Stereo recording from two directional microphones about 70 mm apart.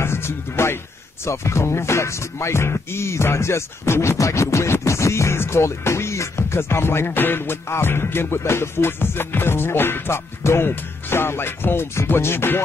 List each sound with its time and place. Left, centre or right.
0.0 s speech: left
1.2 s music: left